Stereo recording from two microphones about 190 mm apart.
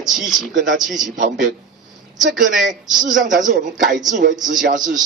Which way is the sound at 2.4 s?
Centre (ahead or behind).